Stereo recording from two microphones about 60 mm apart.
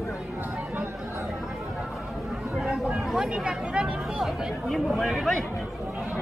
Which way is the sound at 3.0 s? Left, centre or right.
Centre.